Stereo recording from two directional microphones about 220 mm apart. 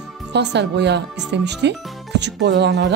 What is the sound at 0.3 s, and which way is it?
Speech, 50° right (ahead or behind).